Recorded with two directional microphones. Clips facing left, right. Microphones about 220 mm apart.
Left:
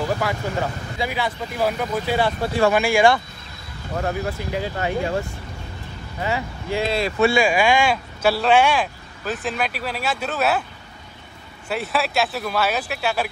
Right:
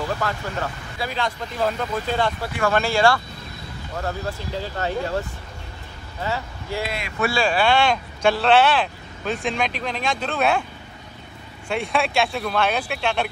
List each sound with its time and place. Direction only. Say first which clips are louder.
0.2 s speech: left 3 dB; 15° left (ahead or behind)
6.2 s speech: left 3 dB; 15° left (ahead or behind)
6.9 s speech: left 9 dB; 30° left (ahead or behind)
7.3 s speech: left 2 dB; 10° left (ahead or behind)
11.7 s speech: right 1 dB; 5° left (ahead or behind)